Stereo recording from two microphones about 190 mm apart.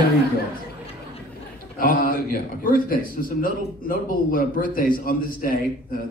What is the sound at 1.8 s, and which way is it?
A man's voice, 50° left (ahead or behind).